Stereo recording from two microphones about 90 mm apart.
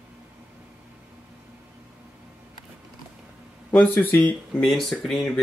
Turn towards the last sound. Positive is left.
turn(degrees=5)  # may be behind; listen again after turning